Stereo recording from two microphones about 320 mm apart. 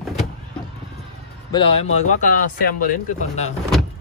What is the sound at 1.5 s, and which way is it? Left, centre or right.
Speech, centre.